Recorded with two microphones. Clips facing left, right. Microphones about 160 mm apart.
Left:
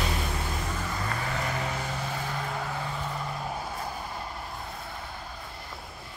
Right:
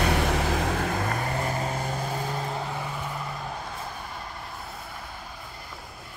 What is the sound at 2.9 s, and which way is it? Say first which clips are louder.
Vehicle: even; 5° right (ahead or behind).